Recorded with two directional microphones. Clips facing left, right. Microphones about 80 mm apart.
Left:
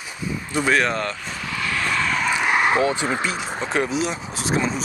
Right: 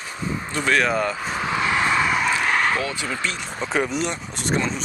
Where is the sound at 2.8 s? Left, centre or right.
Left.